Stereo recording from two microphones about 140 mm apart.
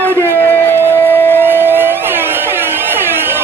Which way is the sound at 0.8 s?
15° right (ahead or behind).